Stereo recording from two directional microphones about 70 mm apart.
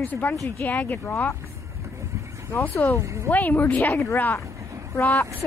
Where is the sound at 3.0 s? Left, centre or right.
Right.